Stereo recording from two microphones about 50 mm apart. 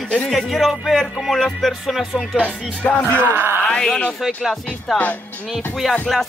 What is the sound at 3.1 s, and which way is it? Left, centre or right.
Speech, right.